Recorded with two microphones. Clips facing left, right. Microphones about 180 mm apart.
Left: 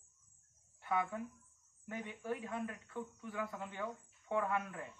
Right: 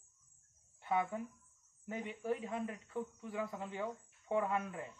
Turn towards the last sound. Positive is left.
turn(degrees=-20)  # may be behind; listen again after turning